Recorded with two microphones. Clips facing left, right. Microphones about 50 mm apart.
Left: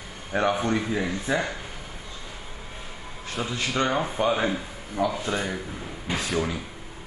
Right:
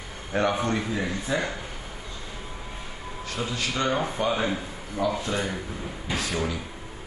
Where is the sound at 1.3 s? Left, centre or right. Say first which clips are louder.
Left 2 dB; left.